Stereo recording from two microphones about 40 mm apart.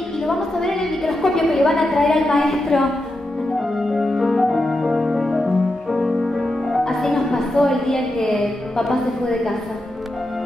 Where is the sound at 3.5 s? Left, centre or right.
Centre.